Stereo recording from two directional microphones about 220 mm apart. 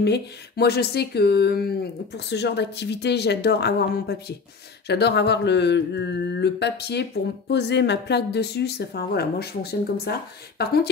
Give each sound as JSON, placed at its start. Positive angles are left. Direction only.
{"t": 0.0, "sound": "mantra", "side_deg": 50}